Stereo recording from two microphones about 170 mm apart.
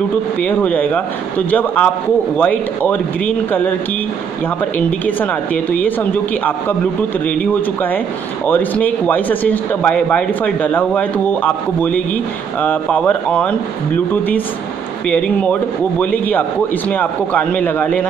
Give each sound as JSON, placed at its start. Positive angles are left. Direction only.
{"t": 0.4, "sound": "a man's voice", "side_deg": 10}
{"t": 4.7, "sound": "a man's voice", "side_deg": 10}
{"t": 8.5, "sound": "a man's voice", "side_deg": 10}